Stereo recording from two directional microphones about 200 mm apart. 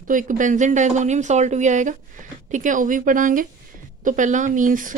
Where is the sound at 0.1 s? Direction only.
40° right (ahead or behind).